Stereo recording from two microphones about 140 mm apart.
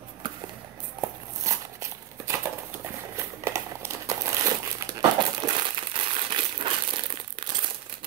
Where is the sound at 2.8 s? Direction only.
20° right (ahead or behind).